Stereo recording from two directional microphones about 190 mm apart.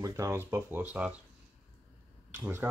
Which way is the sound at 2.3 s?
10° right (ahead or behind).